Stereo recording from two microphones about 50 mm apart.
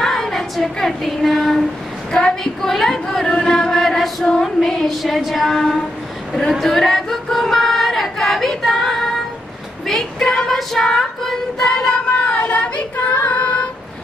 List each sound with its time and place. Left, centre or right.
0.0 s child singing: centre
1.2 s female singing: centre
2.1 s speech: centre
3.7 s chant: centre
4.4 s female singing: centre
5.5 s speech: centre
6.6 s a sound: centre
10.2 s female singing: centre
12.5 s child singing: left